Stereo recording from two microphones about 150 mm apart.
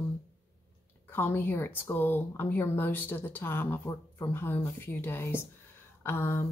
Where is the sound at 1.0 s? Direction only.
15° left (ahead or behind).